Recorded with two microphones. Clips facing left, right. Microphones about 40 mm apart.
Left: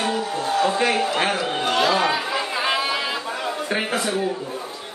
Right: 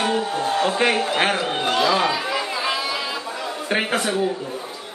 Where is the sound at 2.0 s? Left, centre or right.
Left.